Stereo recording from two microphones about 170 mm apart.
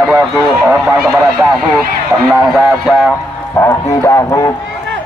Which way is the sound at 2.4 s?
5° right (ahead or behind).